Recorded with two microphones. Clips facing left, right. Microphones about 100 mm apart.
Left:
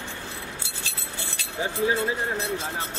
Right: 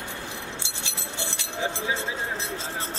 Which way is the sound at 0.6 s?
20° right (ahead or behind).